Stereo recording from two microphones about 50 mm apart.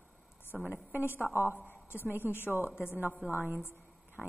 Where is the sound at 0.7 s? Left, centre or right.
Left.